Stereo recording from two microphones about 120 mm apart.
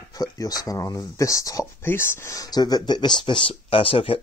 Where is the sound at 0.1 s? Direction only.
30° left (ahead or behind).